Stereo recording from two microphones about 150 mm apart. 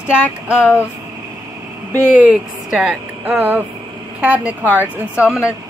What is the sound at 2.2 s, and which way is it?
A woman's voice, 5° right (ahead or behind).